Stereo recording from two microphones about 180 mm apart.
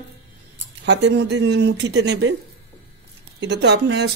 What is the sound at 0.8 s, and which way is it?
Speech, 70° right (ahead or behind).